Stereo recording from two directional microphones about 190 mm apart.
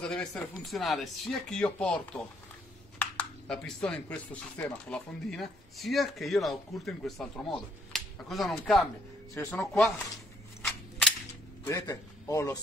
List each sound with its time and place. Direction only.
0.0 s speech: 5° left (ahead or behind)
9.3 s a man's voice: 15° left (ahead or behind)
10.6 s cap gun: centre (ahead or behind)
11.6 s a man's voice: 15° left (ahead or behind)